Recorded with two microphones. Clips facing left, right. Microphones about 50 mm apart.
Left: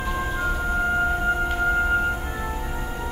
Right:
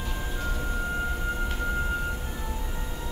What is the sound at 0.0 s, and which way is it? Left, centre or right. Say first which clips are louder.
Music: left 8 dB; left.